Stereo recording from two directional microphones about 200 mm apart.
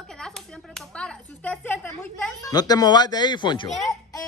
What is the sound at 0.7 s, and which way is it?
Speech, 5° left (ahead or behind).